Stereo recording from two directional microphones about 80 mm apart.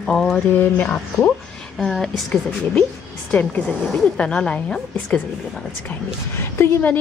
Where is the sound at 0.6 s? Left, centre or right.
Left.